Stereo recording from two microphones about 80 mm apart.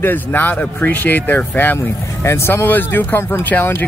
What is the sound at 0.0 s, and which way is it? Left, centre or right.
Speech, left.